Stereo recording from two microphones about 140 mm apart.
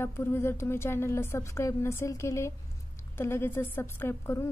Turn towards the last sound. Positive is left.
turn(degrees=20)  # may be behind; listen again after turning